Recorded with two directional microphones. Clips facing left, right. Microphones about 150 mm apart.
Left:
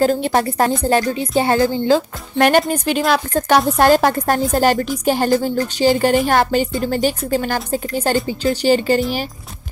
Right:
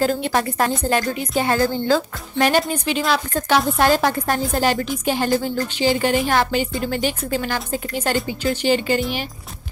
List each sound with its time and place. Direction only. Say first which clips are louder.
0.0 s a woman's voice: left 4 dB; 40° left (ahead or behind)
2.3 s a woman's voice: left 4 dB; 55° left (ahead or behind); by 9.0 s 35° left (ahead or behind)